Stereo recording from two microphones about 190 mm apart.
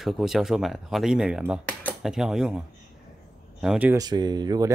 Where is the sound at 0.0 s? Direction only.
Centre (ahead or behind).